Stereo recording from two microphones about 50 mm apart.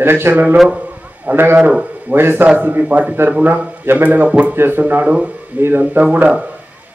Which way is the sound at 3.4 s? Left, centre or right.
Right.